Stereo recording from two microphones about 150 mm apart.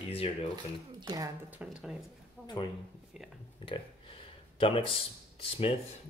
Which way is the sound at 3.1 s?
Centre (ahead or behind).